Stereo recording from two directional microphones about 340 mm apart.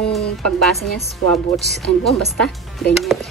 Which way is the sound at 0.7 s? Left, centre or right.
Centre.